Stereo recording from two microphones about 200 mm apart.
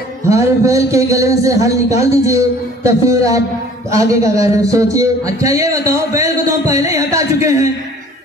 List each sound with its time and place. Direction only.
0.3 s a man's voice: 15° right (ahead or behind)